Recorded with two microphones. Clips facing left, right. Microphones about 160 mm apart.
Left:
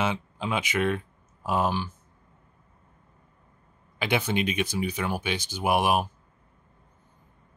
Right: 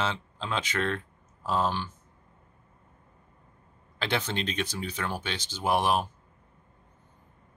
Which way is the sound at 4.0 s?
10° left (ahead or behind).